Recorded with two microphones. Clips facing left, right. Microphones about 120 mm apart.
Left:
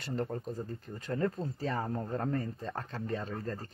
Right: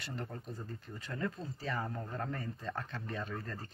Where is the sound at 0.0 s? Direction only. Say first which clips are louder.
Left 8 dB; 40° left (ahead or behind).